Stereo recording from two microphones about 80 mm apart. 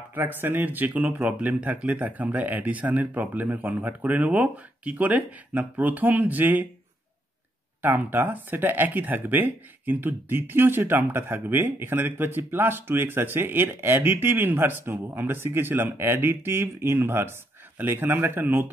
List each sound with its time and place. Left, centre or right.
0.1 s speech: right
7.8 s speech: right